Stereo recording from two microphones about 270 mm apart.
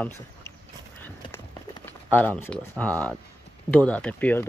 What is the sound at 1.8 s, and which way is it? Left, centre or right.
Speech, centre.